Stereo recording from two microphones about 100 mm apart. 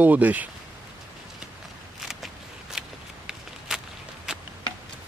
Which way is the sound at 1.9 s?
5° right (ahead or behind).